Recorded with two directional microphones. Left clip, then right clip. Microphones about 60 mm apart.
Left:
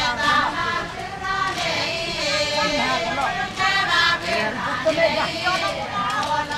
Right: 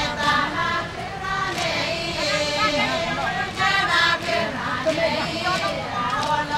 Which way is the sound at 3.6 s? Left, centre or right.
Centre.